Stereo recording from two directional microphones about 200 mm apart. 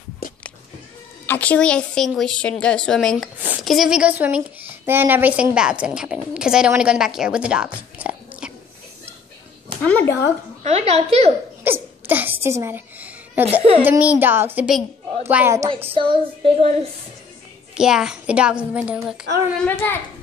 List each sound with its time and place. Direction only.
1.2 s a woman's voice: 10° left (ahead or behind)
9.8 s speech: 10° left (ahead or behind)
10.6 s a woman's voice: 30° right (ahead or behind)
11.6 s sneeze: 10° right (ahead or behind)
13.8 s a woman's voice: 5° right (ahead or behind)
15.9 s child singing: 25° right (ahead or behind)
17.7 s a woman's voice: 5° right (ahead or behind)
19.6 s speech: 10° left (ahead or behind)